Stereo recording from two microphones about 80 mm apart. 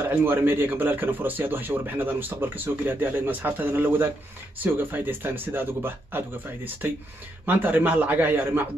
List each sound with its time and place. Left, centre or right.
0.1 s speech: right